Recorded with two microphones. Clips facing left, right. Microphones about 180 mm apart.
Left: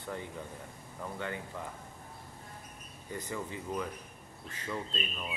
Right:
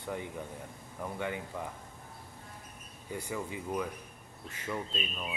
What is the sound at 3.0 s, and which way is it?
Speech, 10° right (ahead or behind).